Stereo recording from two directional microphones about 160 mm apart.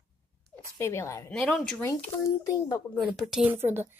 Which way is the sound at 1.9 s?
20° left (ahead or behind).